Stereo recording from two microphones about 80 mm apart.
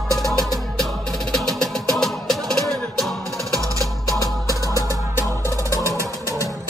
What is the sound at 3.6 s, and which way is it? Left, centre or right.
Music, right.